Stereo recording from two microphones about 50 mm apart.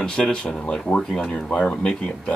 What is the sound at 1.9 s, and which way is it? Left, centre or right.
Speech, centre.